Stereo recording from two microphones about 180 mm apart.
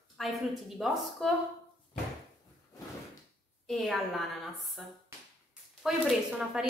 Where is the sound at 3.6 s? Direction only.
Centre (ahead or behind).